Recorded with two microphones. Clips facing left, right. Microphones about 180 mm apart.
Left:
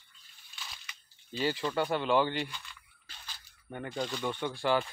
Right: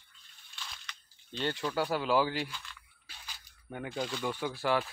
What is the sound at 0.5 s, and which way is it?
Camera, 5° left (ahead or behind).